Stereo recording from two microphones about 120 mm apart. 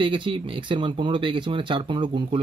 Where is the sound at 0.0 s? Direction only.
45° right (ahead or behind).